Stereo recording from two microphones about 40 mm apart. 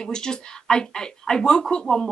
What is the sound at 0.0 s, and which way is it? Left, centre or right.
Speech, centre.